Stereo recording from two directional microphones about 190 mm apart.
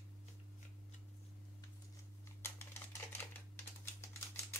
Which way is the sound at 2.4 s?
10° left (ahead or behind).